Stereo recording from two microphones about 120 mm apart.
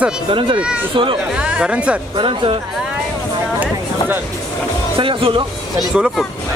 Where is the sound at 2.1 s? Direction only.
45° right (ahead or behind).